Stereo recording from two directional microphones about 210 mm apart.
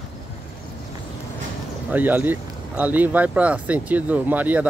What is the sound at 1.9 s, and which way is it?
Speech, 10° right (ahead or behind).